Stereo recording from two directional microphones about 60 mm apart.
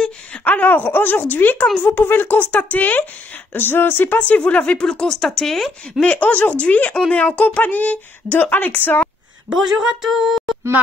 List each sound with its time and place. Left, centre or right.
0.4 s speech: left; by 5.7 s centre
5.9 s speech: left
10.0 s a sound: centre